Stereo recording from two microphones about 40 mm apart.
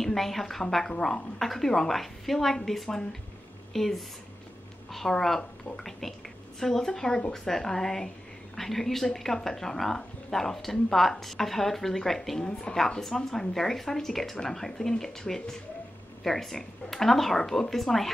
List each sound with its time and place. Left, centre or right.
0.0 s speech: centre
12.4 s speech: left
12.7 s speech: centre